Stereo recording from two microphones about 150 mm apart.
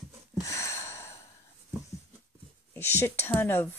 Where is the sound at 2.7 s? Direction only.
15° left (ahead or behind).